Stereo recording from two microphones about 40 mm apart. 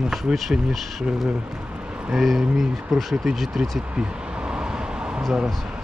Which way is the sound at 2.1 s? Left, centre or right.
Centre.